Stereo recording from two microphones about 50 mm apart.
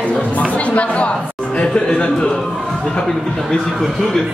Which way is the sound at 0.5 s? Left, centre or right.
Left.